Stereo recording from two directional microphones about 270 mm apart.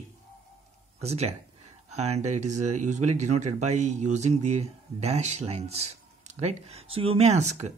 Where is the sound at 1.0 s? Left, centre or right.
Right.